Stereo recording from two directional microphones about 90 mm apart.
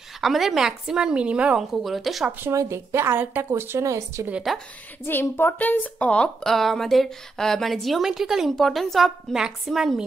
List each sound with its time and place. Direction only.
0.2 s a woman's voice: centre (ahead or behind)
2.5 s speech: 30° right (ahead or behind)
3.8 s speech: 35° right (ahead or behind)
4.3 s speech: 5° right (ahead or behind)
5.0 s a woman's voice: 25° left (ahead or behind); by 10.0 s 5° right (ahead or behind)